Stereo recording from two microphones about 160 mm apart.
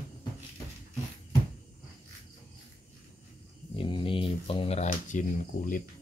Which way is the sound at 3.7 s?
30° left (ahead or behind).